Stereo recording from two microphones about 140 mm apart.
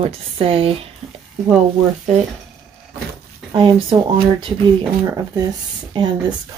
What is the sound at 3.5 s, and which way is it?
Speech, 40° right (ahead or behind).